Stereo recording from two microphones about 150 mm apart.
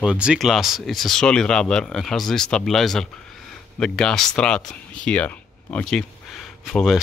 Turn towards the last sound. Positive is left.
turn(degrees=0)  # may be behind; listen again after turning